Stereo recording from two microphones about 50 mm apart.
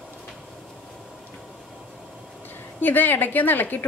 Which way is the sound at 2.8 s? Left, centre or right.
Left.